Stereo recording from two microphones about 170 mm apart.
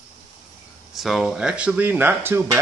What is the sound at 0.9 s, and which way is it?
Speech, centre (ahead or behind).